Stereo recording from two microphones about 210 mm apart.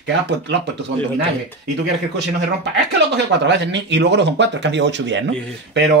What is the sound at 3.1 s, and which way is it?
Speech, 55° right (ahead or behind).